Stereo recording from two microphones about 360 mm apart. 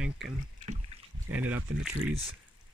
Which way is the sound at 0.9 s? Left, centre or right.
Centre.